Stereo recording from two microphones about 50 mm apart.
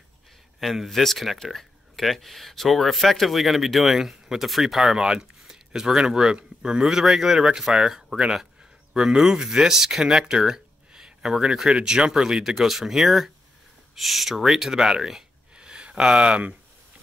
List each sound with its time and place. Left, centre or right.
0.6 s speech: centre
4.9 s speech: centre
15.5 s a sound: centre